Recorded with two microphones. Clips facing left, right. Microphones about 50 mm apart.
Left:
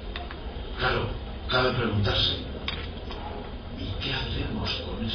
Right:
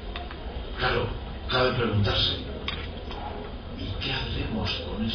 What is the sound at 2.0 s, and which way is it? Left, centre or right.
Speech, right.